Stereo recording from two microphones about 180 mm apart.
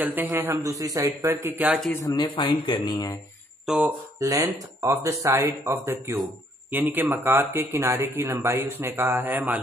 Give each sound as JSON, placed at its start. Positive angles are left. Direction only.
{"t": 0.0, "sound": "speech", "side_deg": -10}
{"t": 1.9, "sound": "speech", "side_deg": 20}
{"t": 3.6, "sound": "speech", "side_deg": -10}